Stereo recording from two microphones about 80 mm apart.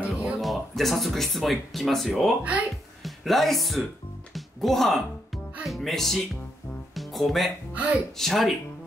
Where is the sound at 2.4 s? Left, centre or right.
Centre.